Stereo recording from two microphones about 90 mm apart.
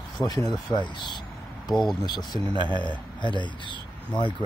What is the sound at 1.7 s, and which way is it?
Speech, centre (ahead or behind).